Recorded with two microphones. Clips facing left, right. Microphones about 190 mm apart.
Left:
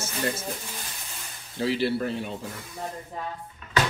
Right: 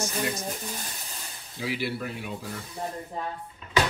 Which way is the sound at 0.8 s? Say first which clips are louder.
Right 1 dB; 40° right (ahead or behind).